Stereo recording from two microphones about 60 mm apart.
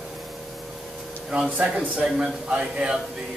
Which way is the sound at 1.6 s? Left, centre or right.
Centre.